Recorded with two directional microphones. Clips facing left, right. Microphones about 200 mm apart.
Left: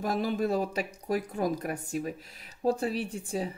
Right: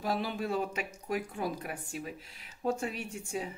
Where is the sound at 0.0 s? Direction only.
45° left (ahead or behind).